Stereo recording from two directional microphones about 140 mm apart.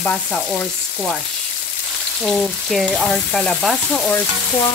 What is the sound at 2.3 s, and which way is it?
Frying, centre (ahead or behind).